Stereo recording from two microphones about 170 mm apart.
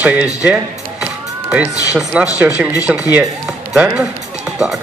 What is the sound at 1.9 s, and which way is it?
A man's voice, 5° right (ahead or behind).